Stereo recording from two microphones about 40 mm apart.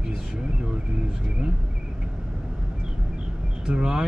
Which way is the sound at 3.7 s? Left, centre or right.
Centre.